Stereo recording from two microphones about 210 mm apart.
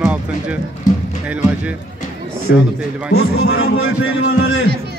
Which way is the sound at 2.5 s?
50° left (ahead or behind).